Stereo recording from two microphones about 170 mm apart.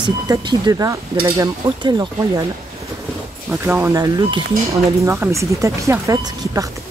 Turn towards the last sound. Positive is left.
turn(degrees=-20)  # may be behind; listen again after turning